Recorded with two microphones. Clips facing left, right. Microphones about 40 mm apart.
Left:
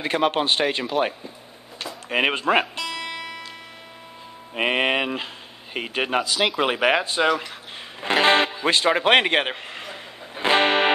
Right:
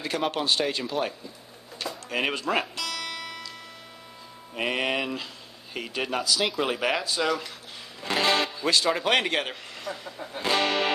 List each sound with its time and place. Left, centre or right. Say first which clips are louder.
0.3 s speech: left 4 dB; left
2.7 s music: left 3 dB; left
4.6 s speech: left 6 dB; left